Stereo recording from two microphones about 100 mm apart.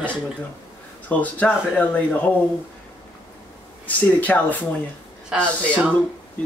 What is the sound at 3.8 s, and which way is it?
Speech, 15° left (ahead or behind).